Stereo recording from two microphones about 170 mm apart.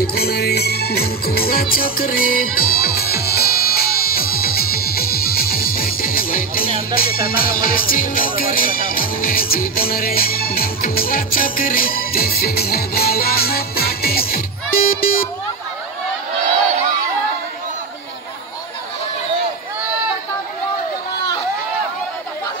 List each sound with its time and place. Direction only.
0.0 s music: 65° left (ahead or behind)